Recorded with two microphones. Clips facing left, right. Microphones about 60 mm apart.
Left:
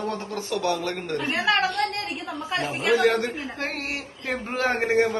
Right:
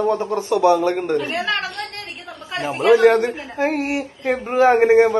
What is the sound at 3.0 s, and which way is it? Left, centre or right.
Speech, right.